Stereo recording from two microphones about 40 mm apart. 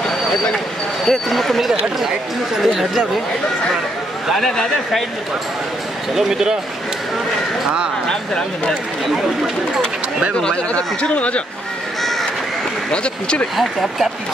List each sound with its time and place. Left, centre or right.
1.0 s speech: centre
6.1 s speech: centre
8.1 s speech: centre
10.4 s speech: left
12.0 s crow: centre
12.9 s speech: left
13.6 s speech: centre